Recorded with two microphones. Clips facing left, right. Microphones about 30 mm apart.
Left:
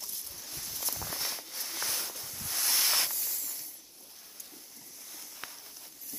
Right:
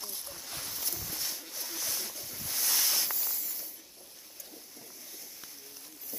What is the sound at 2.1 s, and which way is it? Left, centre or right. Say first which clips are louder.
Ocean: left 1 dB; centre.